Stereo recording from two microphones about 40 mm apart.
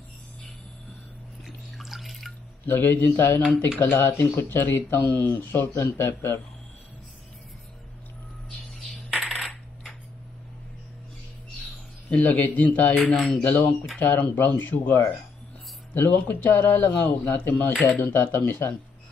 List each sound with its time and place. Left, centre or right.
1.8 s drip: centre
2.6 s speech: left
4.7 s speech: left
9.2 s coin: centre
12.1 s speech: left
13.0 s speech: centre
13.4 s speech: left
16.6 s speech: left
17.2 s speech: left
17.7 s speech: left
18.1 s speech: left